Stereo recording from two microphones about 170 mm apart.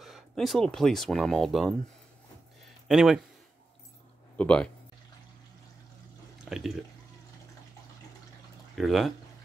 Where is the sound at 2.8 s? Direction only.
Centre (ahead or behind).